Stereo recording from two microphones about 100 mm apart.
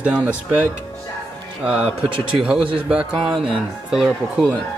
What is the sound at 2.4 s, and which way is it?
Speech, 10° right (ahead or behind).